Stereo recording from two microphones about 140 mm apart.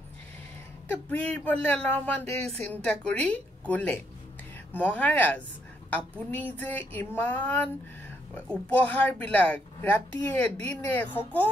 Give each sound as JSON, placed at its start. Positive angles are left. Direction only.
{"t": 1.1, "sound": "speech", "side_deg": 10}